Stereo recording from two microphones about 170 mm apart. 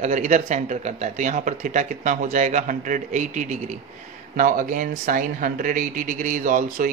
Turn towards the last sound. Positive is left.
turn(degrees=-50)  # may be behind; listen again after turning